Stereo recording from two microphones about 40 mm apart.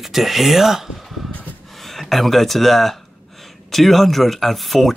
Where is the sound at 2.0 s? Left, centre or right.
Centre.